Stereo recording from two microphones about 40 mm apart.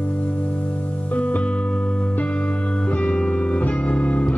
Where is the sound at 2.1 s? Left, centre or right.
Left.